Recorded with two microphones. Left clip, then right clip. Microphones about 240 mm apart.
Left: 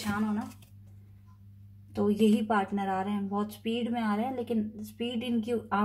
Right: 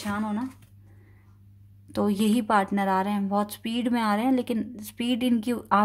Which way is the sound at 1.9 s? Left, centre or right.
Right.